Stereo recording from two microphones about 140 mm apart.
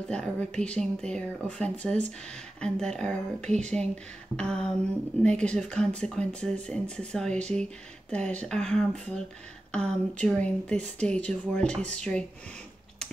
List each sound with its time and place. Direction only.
0.1 s speech: 5° left (ahead or behind)